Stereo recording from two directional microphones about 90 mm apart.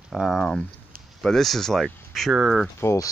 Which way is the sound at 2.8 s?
35° left (ahead or behind).